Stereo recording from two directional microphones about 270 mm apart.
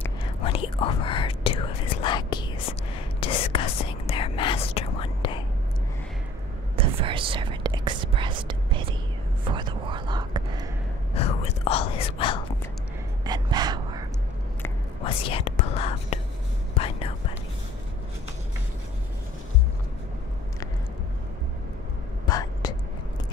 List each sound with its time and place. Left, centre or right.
0.2 s whispering: centre
6.8 s whispering: centre
11.1 s whispering: left
13.2 s gasp: centre
15.0 s whispering: centre
22.3 s a sound: centre